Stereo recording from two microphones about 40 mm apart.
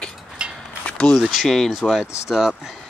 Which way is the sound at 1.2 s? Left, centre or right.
Centre.